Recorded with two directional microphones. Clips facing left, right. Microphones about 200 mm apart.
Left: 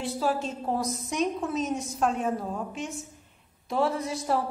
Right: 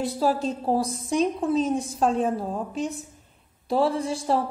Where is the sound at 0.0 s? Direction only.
35° right (ahead or behind).